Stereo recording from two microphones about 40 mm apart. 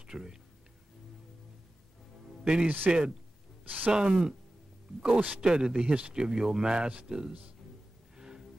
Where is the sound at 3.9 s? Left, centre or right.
Right.